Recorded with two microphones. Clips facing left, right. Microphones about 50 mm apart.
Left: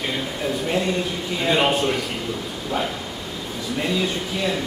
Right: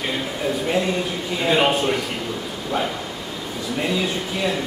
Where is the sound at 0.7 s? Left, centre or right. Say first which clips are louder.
Even; centre.